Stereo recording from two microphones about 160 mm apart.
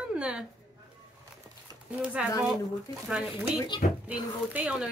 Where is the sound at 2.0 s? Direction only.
5° right (ahead or behind).